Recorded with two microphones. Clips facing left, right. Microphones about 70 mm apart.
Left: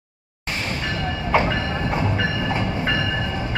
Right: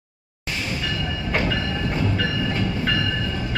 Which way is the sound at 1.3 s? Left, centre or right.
Left.